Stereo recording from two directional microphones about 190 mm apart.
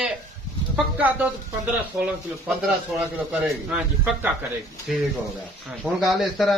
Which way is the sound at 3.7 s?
10° right (ahead or behind).